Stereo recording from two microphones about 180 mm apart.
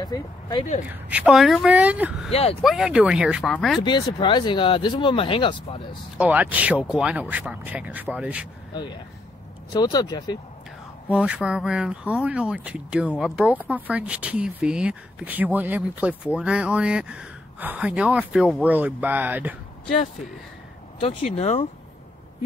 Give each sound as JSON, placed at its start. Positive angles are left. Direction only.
{"t": 0.0, "sound": "speech", "side_deg": 25}
{"t": 0.8, "sound": "speech", "side_deg": -5}
{"t": 3.8, "sound": "speech", "side_deg": 25}
{"t": 6.1, "sound": "speech", "side_deg": -10}
{"t": 9.7, "sound": "speech", "side_deg": 20}
{"t": 11.1, "sound": "speech", "side_deg": -5}
{"t": 21.4, "sound": "speech", "side_deg": 35}